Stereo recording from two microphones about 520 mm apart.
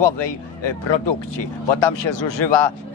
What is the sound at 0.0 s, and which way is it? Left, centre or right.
Speech, left.